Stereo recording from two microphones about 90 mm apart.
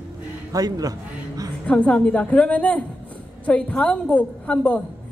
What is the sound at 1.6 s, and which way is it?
A woman's voice, 15° left (ahead or behind).